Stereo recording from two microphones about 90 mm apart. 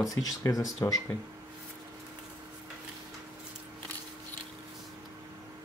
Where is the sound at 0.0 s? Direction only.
40° left (ahead or behind).